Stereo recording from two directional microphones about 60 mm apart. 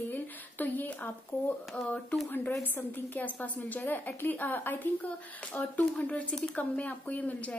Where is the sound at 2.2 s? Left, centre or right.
Left.